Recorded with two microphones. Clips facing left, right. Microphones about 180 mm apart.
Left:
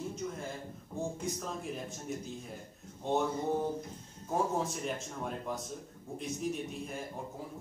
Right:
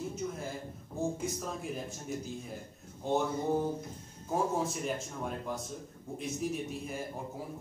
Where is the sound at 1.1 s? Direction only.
5° right (ahead or behind).